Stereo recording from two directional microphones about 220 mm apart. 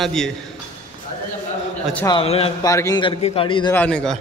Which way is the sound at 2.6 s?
15° left (ahead or behind).